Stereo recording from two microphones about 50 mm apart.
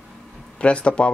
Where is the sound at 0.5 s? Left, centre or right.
Left.